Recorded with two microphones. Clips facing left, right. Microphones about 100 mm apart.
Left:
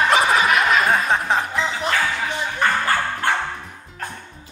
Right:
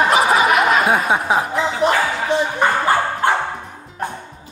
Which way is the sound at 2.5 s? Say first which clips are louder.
Even; 20° right (ahead or behind).